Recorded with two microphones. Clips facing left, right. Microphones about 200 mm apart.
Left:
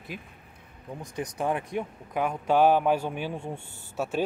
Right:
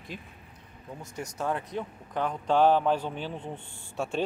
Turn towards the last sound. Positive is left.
turn(degrees=5)  # may be behind; listen again after turning